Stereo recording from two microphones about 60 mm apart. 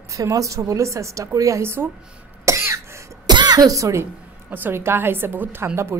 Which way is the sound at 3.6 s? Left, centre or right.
Right.